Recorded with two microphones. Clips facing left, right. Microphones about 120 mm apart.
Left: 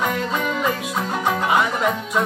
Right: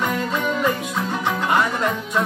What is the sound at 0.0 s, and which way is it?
Music, centre (ahead or behind).